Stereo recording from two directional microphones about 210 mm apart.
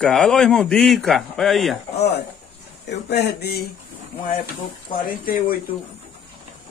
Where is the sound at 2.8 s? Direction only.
50° left (ahead or behind).